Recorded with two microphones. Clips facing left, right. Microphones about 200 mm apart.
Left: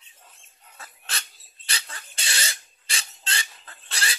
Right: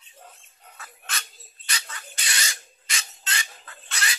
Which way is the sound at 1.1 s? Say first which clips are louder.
Right 2 dB; 30° left (ahead or behind).